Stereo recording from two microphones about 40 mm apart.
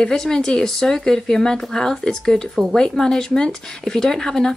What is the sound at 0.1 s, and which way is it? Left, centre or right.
Speech, centre.